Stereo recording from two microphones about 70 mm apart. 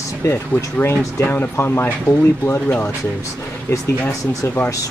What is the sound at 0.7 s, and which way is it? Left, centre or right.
Speech, left.